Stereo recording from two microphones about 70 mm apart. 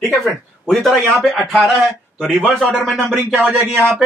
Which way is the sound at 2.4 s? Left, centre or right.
Centre.